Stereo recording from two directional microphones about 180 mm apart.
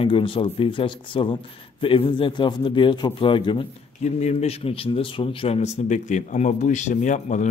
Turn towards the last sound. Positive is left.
turn(degrees=40)  # may be behind; listen again after turning